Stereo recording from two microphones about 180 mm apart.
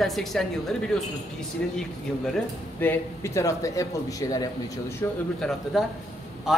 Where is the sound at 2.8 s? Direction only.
15° left (ahead or behind).